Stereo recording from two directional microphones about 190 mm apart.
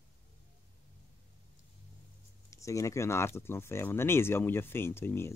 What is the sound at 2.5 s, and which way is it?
Speech, 15° left (ahead or behind).